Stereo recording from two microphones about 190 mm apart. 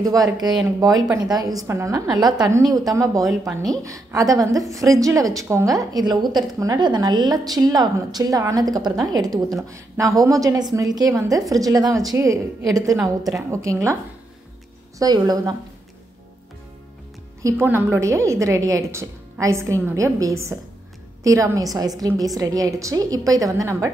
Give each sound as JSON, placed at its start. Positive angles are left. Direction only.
{"t": 0.0, "sound": "a woman's voice", "side_deg": -20}
{"t": 3.3, "sound": "speech", "side_deg": 0}
{"t": 3.7, "sound": "a woman's voice", "side_deg": -15}
{"t": 15.0, "sound": "a woman's voice", "side_deg": -20}
{"t": 17.4, "sound": "a woman's voice", "side_deg": -15}